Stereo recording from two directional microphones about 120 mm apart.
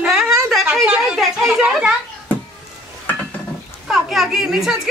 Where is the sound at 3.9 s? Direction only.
Centre (ahead or behind).